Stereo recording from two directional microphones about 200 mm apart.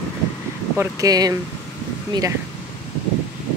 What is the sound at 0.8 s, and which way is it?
Speech, 20° right (ahead or behind).